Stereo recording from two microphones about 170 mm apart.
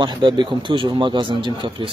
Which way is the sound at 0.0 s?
25° right (ahead or behind).